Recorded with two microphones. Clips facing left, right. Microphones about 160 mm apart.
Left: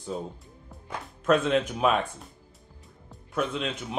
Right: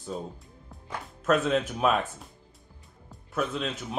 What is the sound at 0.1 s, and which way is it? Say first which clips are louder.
Speech: left 1 dB; 5° left (ahead or behind).